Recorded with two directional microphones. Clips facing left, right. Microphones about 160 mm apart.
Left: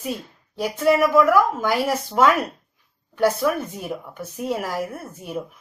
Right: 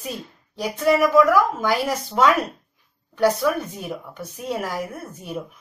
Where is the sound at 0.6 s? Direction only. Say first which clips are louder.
Even; 5° left (ahead or behind).